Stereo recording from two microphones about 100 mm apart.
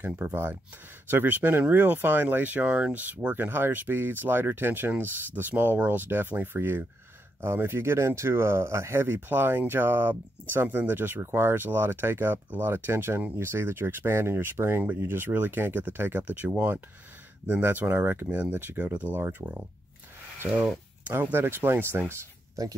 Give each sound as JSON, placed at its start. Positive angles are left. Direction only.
{"t": 0.0, "sound": "speech", "side_deg": -20}
{"t": 21.0, "sound": "speech", "side_deg": -20}
{"t": 22.6, "sound": "speech", "side_deg": -35}